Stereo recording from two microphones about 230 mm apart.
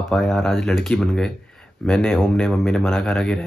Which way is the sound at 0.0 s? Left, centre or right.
Centre.